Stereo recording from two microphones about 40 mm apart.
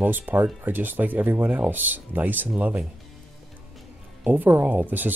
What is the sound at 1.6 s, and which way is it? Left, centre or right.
Speech, right.